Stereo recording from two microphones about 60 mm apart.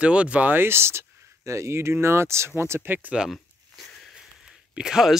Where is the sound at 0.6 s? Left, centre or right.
Right.